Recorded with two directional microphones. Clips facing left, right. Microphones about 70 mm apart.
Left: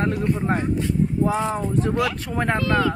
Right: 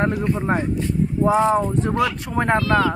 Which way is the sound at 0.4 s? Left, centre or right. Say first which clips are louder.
Right 1 dB; centre.